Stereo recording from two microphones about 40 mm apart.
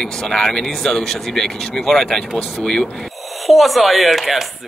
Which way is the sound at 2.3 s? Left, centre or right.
Left.